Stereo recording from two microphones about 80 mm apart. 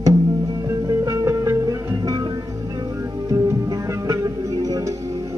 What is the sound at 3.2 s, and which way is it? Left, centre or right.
Music, right.